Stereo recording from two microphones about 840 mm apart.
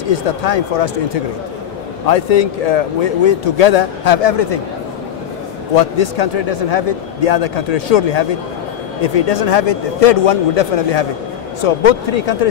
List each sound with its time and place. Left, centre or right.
0.1 s a man's voice: left
5.8 s a man's voice: left